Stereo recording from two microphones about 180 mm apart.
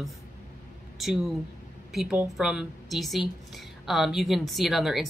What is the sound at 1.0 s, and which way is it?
A woman's voice, 5° right (ahead or behind).